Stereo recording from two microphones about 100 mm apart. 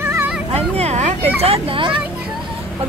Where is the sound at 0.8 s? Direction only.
90° right.